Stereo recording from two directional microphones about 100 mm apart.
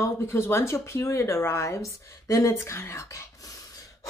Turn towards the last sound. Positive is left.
turn(degrees=35)  # may be behind; listen again after turning